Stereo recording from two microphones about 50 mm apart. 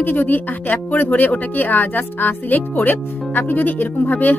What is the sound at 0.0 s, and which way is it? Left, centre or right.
Speech, left.